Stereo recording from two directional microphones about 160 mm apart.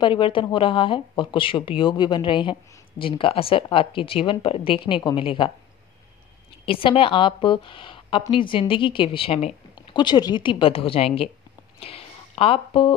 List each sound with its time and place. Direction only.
0.0 s speech: 30° left (ahead or behind)
6.6 s speech: 35° left (ahead or behind)
11.8 s a sound: 35° left (ahead or behind)